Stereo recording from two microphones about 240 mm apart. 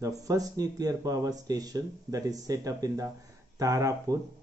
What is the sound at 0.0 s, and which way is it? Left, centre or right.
Speech, centre.